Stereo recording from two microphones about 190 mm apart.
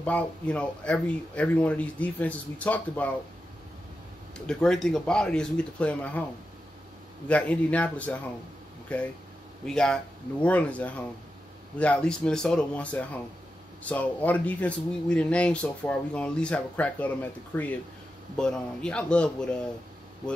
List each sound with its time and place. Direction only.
0.0 s speech: 5° left (ahead or behind)
4.5 s speech: centre (ahead or behind)
7.2 s speech: 5° left (ahead or behind)